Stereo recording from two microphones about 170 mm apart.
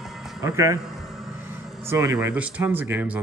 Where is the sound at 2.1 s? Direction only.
5° right (ahead or behind).